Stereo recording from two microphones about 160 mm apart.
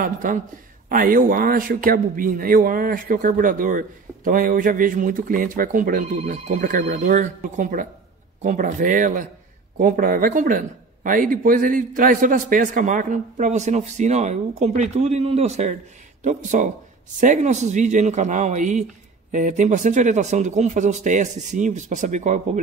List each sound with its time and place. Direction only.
0.0 s a man's voice: 55° right (ahead or behind)